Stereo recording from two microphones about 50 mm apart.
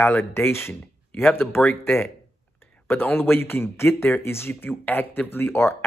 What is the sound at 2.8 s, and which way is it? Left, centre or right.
Speech, left.